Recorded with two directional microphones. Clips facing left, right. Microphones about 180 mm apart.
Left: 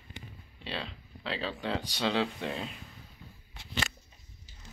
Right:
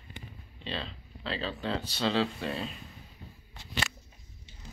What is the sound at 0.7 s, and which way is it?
Speech, 10° left (ahead or behind).